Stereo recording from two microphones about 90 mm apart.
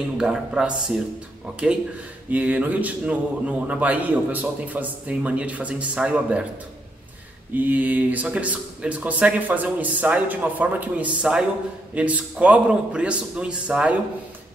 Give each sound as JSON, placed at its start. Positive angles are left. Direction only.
{"t": 0.2, "sound": "a man's voice", "side_deg": -10}
{"t": 2.3, "sound": "a man's voice", "side_deg": -20}
{"t": 7.5, "sound": "a man's voice", "side_deg": -20}